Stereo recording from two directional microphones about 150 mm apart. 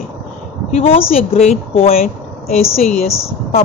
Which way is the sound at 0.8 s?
40° left (ahead or behind).